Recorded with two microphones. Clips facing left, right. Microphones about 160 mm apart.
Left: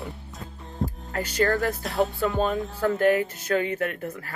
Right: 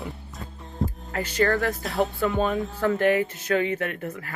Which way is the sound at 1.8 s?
Centre (ahead or behind).